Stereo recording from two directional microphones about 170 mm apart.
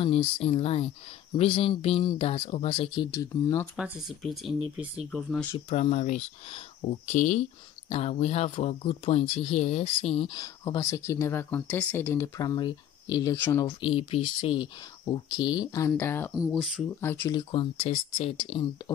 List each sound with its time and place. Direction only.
0.0 s speech: 35° left (ahead or behind)
3.1 s speech: 15° left (ahead or behind)
3.7 s speech: centre (ahead or behind)
5.7 s speech: 40° left (ahead or behind); by 13.7 s 15° left (ahead or behind)
13.7 s speech: 30° left (ahead or behind); by 16.3 s 15° left (ahead or behind)
16.3 s speech: 5° right (ahead or behind)
17.0 s speech: 15° left (ahead or behind)